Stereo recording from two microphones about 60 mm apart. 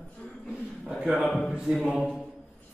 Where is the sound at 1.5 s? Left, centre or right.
Centre.